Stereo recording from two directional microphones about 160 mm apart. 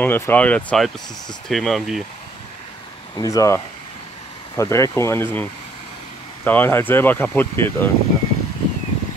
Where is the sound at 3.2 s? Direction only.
20° left (ahead or behind).